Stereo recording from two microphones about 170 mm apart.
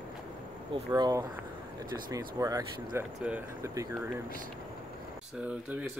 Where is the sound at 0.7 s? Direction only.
25° right (ahead or behind).